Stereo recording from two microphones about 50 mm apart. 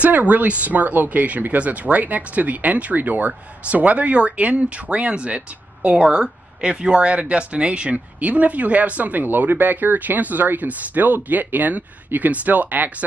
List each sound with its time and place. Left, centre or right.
0.0 s speech: right